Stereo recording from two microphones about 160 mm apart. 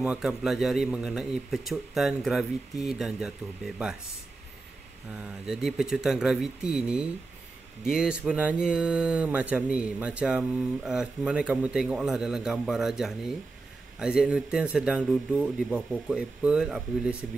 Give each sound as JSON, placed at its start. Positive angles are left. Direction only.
{"t": 0.0, "sound": "speech", "side_deg": -5}
{"t": 5.1, "sound": "speech", "side_deg": -5}